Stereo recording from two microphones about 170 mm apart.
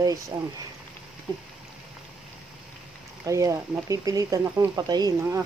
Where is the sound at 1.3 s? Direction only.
25° right (ahead or behind).